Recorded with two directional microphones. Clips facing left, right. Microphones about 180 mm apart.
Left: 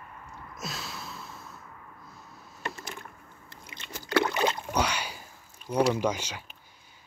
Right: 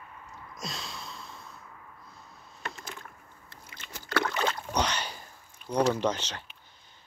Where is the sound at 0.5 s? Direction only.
5° left (ahead or behind).